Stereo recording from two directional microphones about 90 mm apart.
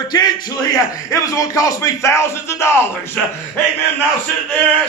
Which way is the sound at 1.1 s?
35° left (ahead or behind).